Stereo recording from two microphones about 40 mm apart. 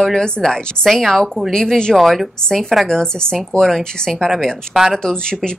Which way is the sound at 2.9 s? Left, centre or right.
Centre.